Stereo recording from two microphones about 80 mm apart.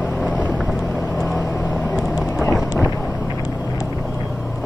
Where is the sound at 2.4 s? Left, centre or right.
Centre.